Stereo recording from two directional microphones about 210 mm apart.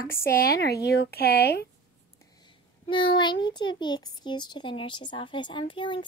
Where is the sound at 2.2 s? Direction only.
20° left (ahead or behind).